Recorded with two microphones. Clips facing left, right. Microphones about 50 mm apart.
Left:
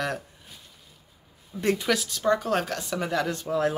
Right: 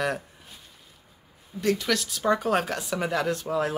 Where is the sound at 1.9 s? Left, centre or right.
Centre.